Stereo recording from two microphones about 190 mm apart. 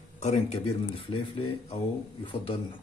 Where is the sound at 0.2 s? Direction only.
35° left (ahead or behind).